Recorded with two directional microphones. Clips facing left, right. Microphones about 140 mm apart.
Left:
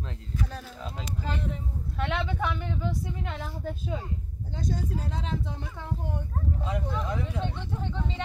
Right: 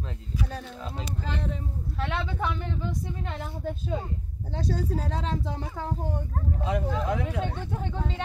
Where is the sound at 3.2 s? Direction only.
20° right (ahead or behind).